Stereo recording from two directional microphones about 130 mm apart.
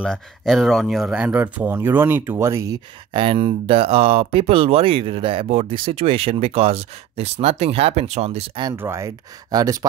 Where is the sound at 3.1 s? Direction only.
45° right (ahead or behind).